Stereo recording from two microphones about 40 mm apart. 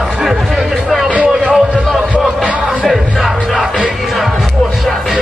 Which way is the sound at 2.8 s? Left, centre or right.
Centre.